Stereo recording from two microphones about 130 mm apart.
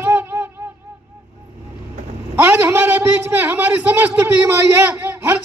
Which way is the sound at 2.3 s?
15° right (ahead or behind).